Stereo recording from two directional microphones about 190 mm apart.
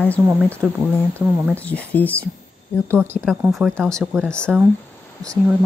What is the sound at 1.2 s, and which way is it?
Speech, 10° right (ahead or behind).